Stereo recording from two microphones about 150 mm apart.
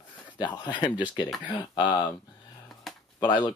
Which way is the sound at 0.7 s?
30° left (ahead or behind).